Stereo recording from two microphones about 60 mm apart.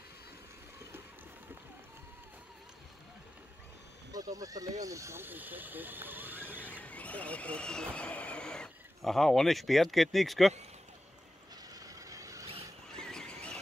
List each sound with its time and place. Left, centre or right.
4.1 s speech: right
5.1 s speech: right
6.8 s speech: left
9.0 s speech: centre
11.7 s mechanisms: right
12.9 s a sound: centre
13.3 s squeal: left